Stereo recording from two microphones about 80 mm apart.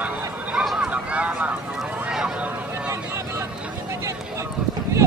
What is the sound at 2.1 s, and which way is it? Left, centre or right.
Boat, centre.